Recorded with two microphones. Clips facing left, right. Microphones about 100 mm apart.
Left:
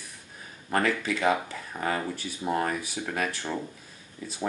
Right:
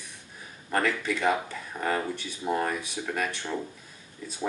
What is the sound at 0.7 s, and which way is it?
Speech, centre (ahead or behind).